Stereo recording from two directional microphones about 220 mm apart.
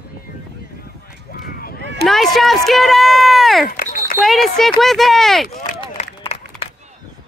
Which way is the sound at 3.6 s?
40° left (ahead or behind).